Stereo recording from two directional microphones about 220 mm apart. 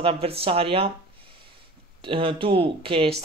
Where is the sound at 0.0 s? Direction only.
25° right (ahead or behind).